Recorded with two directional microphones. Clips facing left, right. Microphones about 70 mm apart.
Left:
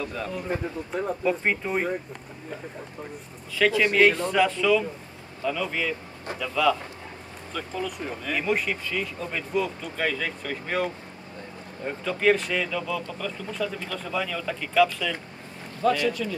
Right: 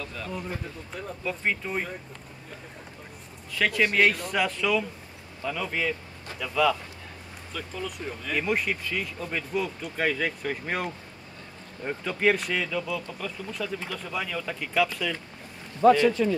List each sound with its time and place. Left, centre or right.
0.0 s speech: centre
3.5 s speech: centre
15.9 s a man's voice: right